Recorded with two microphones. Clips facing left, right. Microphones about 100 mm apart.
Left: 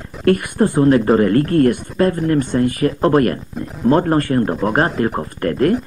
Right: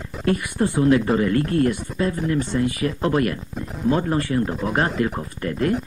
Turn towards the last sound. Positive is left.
turn(degrees=55)  # may be behind; listen again after turning